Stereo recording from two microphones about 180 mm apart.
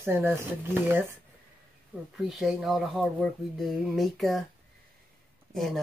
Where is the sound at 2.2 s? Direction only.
Centre (ahead or behind).